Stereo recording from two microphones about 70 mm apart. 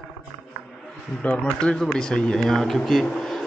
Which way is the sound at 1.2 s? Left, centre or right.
Centre.